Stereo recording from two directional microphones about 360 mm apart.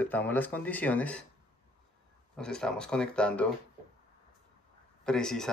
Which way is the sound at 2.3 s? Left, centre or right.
Centre.